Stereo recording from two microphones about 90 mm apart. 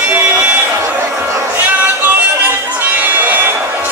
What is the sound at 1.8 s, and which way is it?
Music, 25° right (ahead or behind).